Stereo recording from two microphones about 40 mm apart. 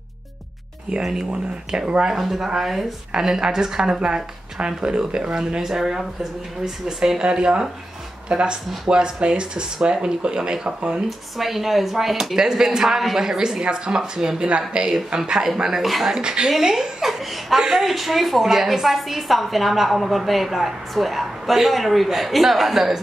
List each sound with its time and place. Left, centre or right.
1.0 s speech: centre
2.1 s a woman's voice: centre; by 11.0 s right
11.1 s a woman's voice: centre; by 15.0 s right
15.1 s a woman's voice: centre
15.8 s a woman's voice: centre
16.2 s speech: right
16.4 s a woman's voice: centre
17.1 s chuckle: centre
17.6 s a woman's voice: centre
17.8 s a woman's voice: centre